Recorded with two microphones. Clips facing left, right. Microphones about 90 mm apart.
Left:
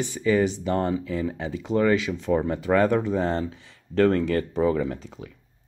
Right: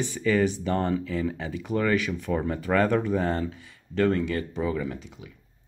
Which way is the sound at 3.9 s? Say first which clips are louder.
Left 4 dB; 35° left (ahead or behind).